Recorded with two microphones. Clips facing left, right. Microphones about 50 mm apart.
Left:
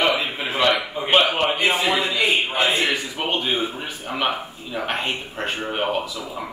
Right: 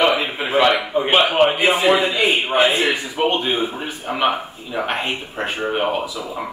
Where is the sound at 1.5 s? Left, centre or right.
Centre.